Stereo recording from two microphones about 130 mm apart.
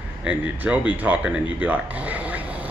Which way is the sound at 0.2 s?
10° right (ahead or behind).